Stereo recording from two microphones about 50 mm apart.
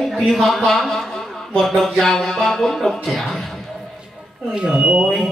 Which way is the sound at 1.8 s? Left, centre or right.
Centre.